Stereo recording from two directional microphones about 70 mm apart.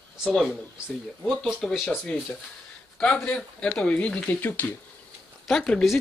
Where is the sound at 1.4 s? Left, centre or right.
Centre.